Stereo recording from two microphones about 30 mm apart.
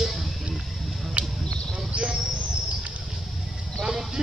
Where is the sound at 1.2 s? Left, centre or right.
Right.